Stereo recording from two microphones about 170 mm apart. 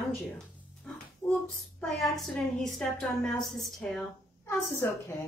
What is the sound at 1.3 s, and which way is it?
A woman's voice, centre (ahead or behind).